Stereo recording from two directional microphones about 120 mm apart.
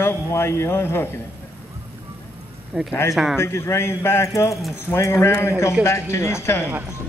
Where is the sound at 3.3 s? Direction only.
20° left (ahead or behind).